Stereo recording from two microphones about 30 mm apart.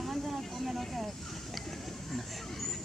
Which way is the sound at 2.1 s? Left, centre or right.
Centre.